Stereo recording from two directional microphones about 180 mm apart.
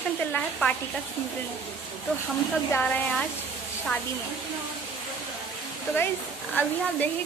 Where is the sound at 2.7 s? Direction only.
5° left (ahead or behind).